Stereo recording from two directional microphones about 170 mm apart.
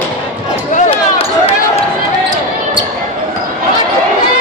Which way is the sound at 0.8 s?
35° left (ahead or behind).